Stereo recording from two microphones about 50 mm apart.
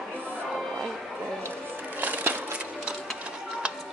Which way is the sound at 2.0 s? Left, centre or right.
Right.